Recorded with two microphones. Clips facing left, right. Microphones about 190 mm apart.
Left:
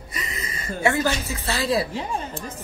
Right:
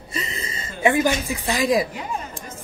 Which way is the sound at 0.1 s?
25° right (ahead or behind).